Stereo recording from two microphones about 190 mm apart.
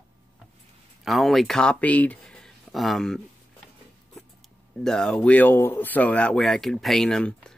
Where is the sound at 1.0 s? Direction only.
Centre (ahead or behind).